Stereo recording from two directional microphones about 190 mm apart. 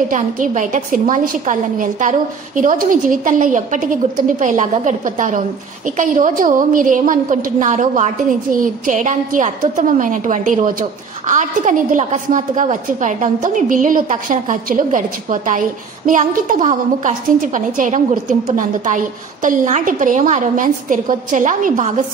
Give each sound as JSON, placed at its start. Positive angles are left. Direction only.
{"t": 0.1, "sound": "a woman's voice", "side_deg": -40}
{"t": 19.4, "sound": "a woman's voice", "side_deg": -45}